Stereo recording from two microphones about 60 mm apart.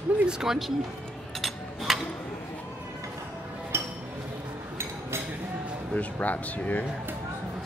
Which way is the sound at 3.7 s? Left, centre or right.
Right.